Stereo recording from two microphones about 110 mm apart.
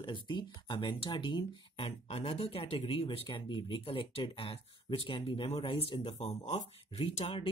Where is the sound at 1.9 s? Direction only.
70° left (ahead or behind).